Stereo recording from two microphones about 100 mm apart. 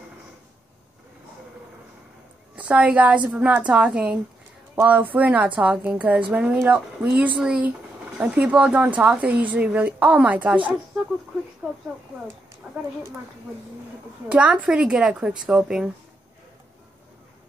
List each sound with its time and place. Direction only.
2.5 s speech: 10° right (ahead or behind)
11.6 s speech: centre (ahead or behind)
14.3 s speech: 10° right (ahead or behind)